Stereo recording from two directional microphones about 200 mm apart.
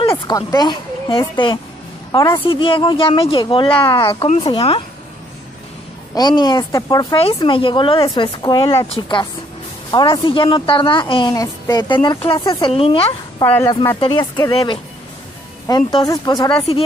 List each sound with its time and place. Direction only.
0.1 s a woman's voice: 15° left (ahead or behind)
6.1 s a woman's voice: 20° left (ahead or behind)
13.4 s a woman's voice: 15° left (ahead or behind)